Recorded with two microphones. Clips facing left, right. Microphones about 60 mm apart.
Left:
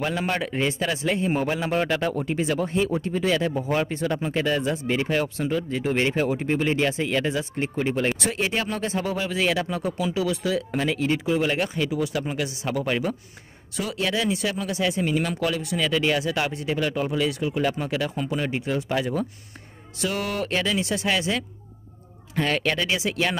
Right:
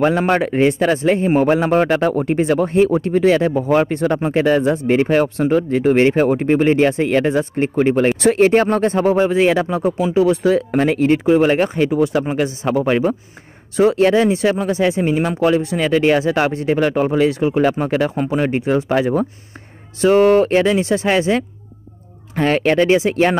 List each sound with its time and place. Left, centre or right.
0.0 s speech: right
3.5 s speech: right
3.8 s speech: right